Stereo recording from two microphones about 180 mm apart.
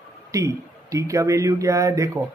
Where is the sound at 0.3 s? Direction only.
15° right (ahead or behind).